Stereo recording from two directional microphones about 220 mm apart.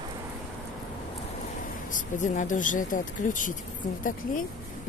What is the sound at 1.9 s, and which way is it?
Speech, 35° left (ahead or behind).